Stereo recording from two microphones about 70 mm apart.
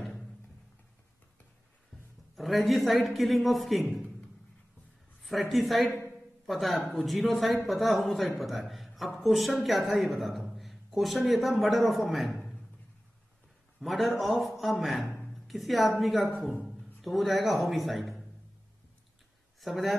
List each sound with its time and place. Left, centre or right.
0.0 s music: centre
2.3 s a man's voice: centre
5.2 s a man's voice: centre
13.7 s a man's voice: centre
15.1 s a sound: centre
16.0 s a man's voice: centre
19.6 s a man's voice: centre